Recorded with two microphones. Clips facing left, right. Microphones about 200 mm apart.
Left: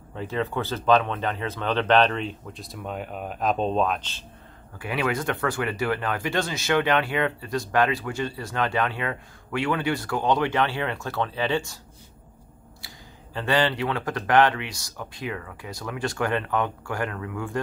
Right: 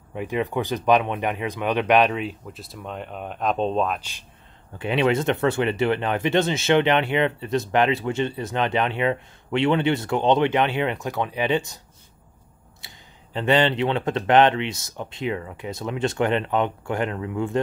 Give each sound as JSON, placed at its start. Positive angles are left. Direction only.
{"t": 0.1, "sound": "speech", "side_deg": -15}
{"t": 4.7, "sound": "speech", "side_deg": -25}
{"t": 12.8, "sound": "speech", "side_deg": -20}